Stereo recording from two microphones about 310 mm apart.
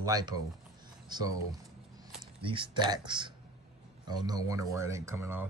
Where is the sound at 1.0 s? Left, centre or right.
Centre.